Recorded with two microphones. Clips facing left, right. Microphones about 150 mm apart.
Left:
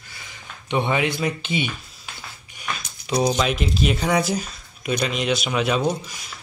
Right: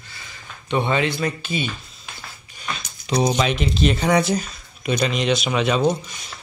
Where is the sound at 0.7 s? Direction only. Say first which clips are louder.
Right 1 dB; 15° left (ahead or behind).